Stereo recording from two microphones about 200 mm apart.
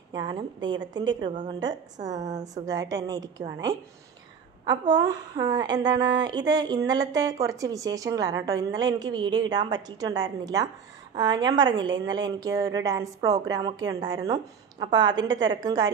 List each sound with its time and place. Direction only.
0.1 s a woman's voice: 20° right (ahead or behind)